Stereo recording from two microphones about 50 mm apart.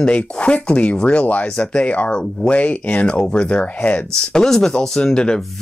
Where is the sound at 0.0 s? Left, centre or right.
Left.